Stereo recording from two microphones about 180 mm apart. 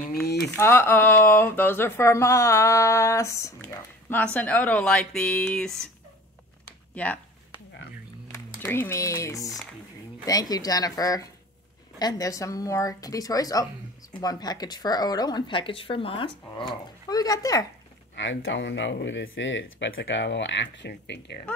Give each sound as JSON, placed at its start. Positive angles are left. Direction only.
{"t": 0.0, "sound": "a sound", "side_deg": 60}
{"t": 0.4, "sound": "speech", "side_deg": 15}
{"t": 7.0, "sound": "speech", "side_deg": 5}
{"t": 8.3, "sound": "speech", "side_deg": 10}
{"t": 18.1, "sound": "speech", "side_deg": 90}